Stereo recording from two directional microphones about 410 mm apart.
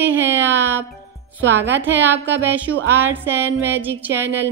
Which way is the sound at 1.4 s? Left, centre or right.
Right.